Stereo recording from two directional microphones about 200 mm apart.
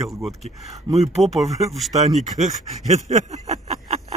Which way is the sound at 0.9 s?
35° right (ahead or behind).